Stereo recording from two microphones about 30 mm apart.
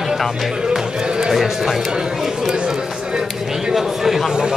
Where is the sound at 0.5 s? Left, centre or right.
Centre.